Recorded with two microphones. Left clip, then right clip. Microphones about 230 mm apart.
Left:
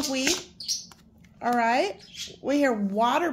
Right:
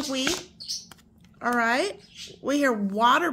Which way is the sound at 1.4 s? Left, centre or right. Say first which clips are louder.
Left 1 dB; centre.